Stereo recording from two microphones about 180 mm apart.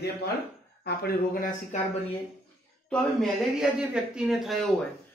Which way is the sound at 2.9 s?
Centre (ahead or behind).